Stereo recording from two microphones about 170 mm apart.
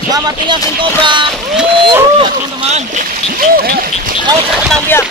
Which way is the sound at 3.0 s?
60° right (ahead or behind).